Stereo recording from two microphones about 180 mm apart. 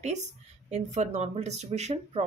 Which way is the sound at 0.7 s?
40° right (ahead or behind).